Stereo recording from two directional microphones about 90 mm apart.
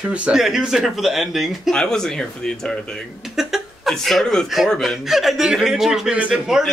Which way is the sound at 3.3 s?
5° right (ahead or behind).